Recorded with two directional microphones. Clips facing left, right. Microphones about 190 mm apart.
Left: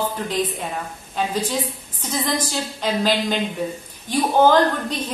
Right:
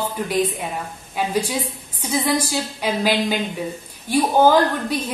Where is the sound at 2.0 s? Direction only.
10° right (ahead or behind).